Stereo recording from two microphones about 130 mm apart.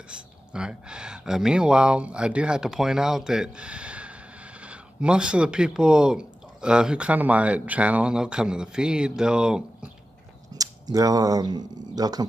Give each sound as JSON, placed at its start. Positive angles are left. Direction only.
{"t": 0.5, "sound": "speech", "side_deg": -5}
{"t": 10.5, "sound": "speech", "side_deg": -30}